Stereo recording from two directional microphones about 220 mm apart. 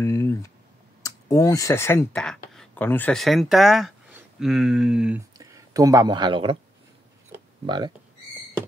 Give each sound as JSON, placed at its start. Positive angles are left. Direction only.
{"t": 0.0, "sound": "a sound", "side_deg": 10}
{"t": 1.0, "sound": "speech", "side_deg": 15}
{"t": 5.4, "sound": "speech", "side_deg": -15}
{"t": 7.6, "sound": "speech", "side_deg": -20}